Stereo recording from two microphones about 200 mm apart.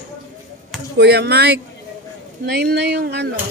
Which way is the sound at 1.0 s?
55° right (ahead or behind).